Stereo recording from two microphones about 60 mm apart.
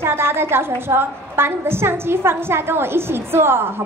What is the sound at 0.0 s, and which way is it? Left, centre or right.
A woman's voice, right.